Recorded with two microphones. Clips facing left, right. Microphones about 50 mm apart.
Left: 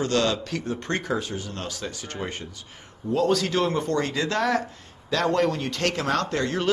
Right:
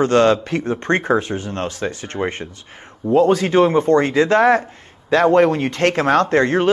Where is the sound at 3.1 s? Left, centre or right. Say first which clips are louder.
Right 9 dB; right.